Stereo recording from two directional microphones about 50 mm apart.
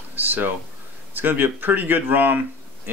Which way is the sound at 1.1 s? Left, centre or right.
Right.